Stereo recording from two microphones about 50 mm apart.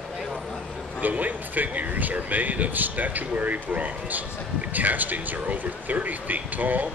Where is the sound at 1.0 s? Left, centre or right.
Right.